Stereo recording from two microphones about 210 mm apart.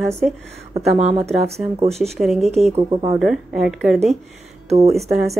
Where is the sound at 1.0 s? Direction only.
30° right (ahead or behind).